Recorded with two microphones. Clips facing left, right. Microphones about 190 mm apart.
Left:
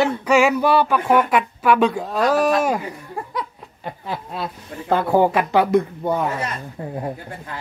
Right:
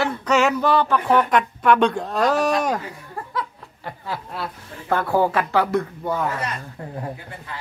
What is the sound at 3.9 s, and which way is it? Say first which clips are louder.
A woman's voice: left 2 dB; 20° left (ahead or behind).